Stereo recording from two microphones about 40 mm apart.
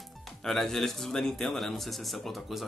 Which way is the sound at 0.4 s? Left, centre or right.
Centre.